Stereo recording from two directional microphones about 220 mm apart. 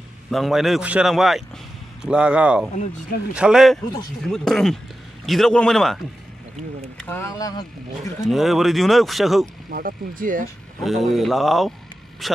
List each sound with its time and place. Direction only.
0.3 s speech: centre (ahead or behind)
7.0 s speech: 10° left (ahead or behind)
8.3 s speech: centre (ahead or behind)
9.7 s speech: 40° right (ahead or behind)
10.8 s speech: centre (ahead or behind)